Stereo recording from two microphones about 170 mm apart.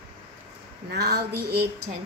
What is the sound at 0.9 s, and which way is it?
Speech, 65° right (ahead or behind).